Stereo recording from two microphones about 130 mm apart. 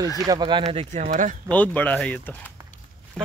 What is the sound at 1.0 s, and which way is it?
Speech, 85° right.